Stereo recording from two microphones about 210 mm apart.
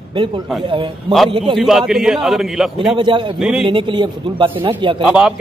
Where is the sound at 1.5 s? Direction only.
Centre (ahead or behind).